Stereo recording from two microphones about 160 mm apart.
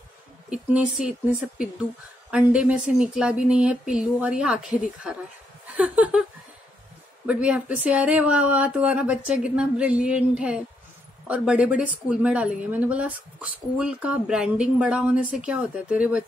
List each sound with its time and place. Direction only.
0.5 s a woman's voice: 5° right (ahead or behind)
2.3 s speech: 5° right (ahead or behind)
7.2 s speech: 10° right (ahead or behind)